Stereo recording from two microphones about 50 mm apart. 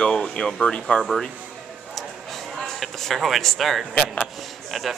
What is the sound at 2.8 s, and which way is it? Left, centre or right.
A man's voice, centre.